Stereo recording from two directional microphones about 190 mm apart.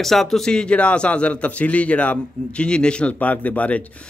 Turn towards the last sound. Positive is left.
turn(degrees=5)  # may be behind; listen again after turning